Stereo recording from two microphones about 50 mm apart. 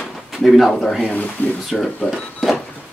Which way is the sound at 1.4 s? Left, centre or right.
Left.